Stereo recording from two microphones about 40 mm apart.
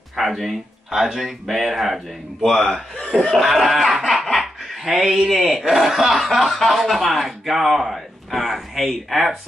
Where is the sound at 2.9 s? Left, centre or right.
Left.